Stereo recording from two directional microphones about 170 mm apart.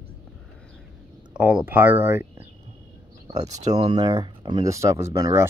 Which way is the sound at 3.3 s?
20° right (ahead or behind).